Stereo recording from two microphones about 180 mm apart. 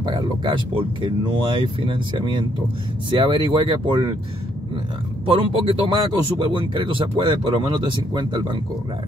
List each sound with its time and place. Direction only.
0.0 s speech: 25° right (ahead or behind)
5.2 s speech: 30° right (ahead or behind)